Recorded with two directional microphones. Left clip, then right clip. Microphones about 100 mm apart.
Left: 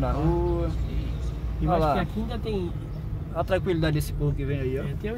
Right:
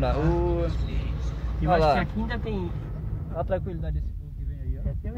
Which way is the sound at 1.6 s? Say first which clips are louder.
Right 2 dB; 15° left (ahead or behind).